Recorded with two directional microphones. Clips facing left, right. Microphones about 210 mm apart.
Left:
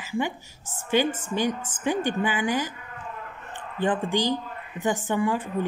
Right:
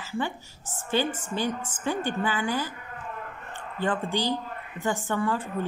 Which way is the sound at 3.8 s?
15° left (ahead or behind).